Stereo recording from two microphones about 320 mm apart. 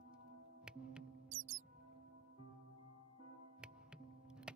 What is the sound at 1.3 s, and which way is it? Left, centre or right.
Music, right.